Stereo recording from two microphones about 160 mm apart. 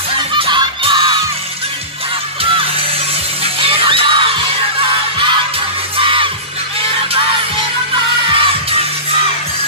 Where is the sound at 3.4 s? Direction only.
35° right (ahead or behind).